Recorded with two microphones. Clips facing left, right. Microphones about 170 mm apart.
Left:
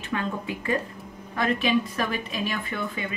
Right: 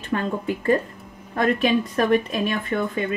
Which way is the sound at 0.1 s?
45° right (ahead or behind).